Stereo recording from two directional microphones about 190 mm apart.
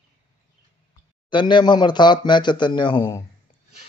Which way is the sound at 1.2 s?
25° left (ahead or behind).